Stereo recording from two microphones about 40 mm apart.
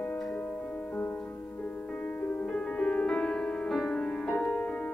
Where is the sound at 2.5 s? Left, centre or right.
Left.